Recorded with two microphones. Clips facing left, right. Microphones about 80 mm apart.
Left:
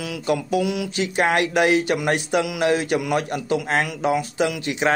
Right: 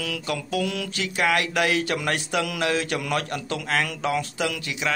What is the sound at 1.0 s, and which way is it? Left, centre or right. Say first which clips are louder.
Speech: left 3 dB; left.